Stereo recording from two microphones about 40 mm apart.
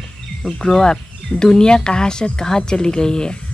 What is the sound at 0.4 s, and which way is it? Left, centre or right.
Speech, left.